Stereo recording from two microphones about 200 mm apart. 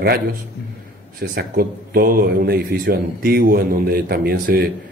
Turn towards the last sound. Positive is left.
turn(degrees=-50)  # may be behind; listen again after turning